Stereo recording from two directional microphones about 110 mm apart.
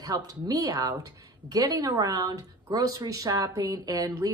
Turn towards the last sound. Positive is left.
turn(degrees=-30)  # may be behind; listen again after turning